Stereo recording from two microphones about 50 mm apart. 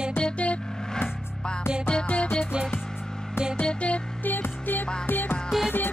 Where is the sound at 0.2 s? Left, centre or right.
Left.